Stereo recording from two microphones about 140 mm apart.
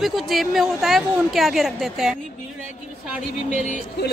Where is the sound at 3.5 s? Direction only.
65° right (ahead or behind).